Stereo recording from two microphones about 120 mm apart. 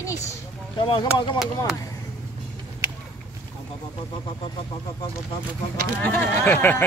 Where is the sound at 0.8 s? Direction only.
45° left (ahead or behind).